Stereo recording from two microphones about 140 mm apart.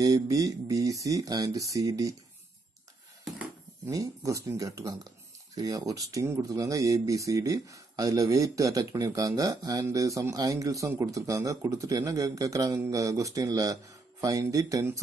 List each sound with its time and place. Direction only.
0.0 s speech: 25° right (ahead or behind)
3.3 s speech: 20° right (ahead or behind)